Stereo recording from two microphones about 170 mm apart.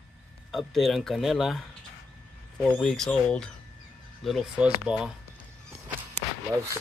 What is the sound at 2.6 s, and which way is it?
Speech, 5° left (ahead or behind).